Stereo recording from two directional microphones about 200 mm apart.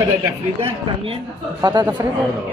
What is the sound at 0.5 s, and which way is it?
A man's voice, 25° right (ahead or behind).